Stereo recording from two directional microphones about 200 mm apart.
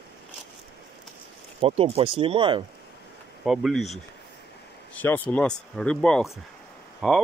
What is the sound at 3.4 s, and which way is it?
Speech, centre (ahead or behind).